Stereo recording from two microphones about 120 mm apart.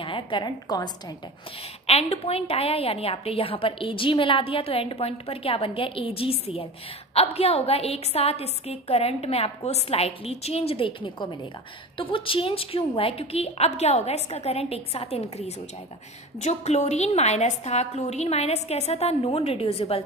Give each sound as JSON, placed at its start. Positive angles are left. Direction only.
{"t": 0.0, "sound": "a woman's voice", "side_deg": 45}
{"t": 1.9, "sound": "a woman's voice", "side_deg": 60}
{"t": 16.3, "sound": "a woman's voice", "side_deg": 70}